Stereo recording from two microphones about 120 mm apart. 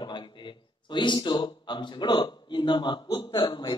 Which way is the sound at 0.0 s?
40° left (ahead or behind).